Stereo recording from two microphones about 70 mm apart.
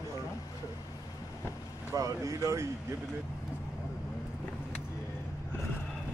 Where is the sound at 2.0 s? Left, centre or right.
Right.